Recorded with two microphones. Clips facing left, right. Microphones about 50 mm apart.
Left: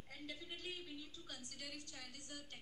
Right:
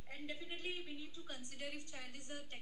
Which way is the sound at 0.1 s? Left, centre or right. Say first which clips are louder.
Right 4 dB; right.